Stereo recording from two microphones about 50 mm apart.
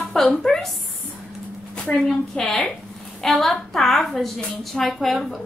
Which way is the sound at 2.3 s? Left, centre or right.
Centre.